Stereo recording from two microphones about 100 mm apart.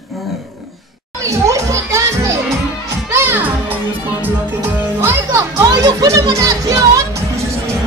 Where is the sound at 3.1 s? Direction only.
25° right (ahead or behind).